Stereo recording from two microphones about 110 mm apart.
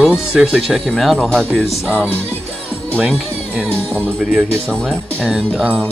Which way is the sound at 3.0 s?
10° right (ahead or behind).